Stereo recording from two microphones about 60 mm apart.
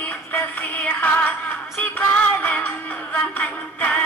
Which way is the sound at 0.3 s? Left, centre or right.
Left.